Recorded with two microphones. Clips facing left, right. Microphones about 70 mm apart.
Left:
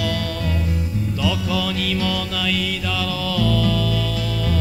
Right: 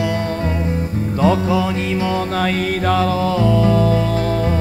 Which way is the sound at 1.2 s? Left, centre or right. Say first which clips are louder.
Right 8 dB; right.